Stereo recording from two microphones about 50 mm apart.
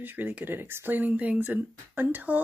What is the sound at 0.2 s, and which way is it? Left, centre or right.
Speech, right.